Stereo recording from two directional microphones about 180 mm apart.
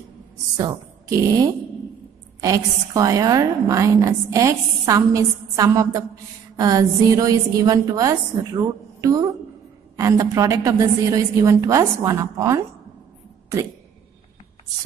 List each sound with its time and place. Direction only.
0.6 s a woman's voice: 20° right (ahead or behind)